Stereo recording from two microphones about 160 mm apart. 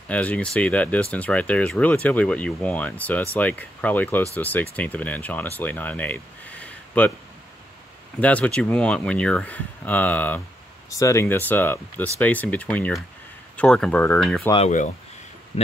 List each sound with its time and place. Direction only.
0.1 s speech: 10° left (ahead or behind)
8.2 s speech: 10° left (ahead or behind)
15.5 s speech: 40° left (ahead or behind)